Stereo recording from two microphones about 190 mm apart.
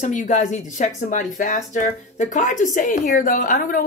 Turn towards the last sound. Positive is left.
turn(degrees=45)  # may be behind; listen again after turning